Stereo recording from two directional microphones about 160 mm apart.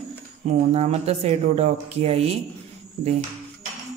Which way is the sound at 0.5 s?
45° right (ahead or behind).